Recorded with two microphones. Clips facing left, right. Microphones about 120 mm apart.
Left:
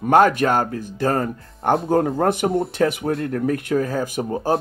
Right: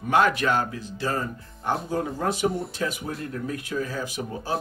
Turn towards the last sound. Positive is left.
turn(degrees=50)  # may be behind; listen again after turning